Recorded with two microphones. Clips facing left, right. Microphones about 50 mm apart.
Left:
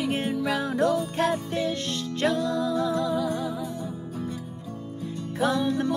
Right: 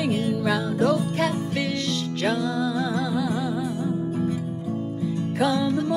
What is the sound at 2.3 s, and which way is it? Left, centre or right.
Music, right.